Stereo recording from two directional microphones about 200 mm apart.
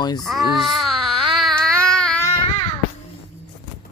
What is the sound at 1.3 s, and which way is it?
Child singing, centre (ahead or behind).